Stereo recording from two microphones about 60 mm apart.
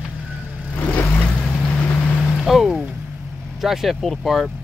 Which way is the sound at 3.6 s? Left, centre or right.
Centre.